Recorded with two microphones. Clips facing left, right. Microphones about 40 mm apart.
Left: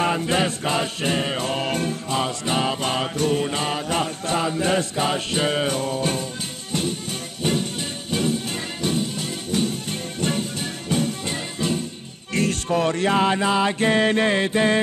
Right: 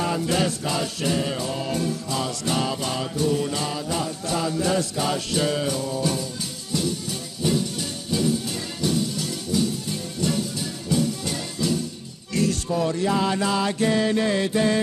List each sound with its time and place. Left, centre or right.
0.0 s music: left
8.1 s music: left
12.4 s music: left
13.4 s music: left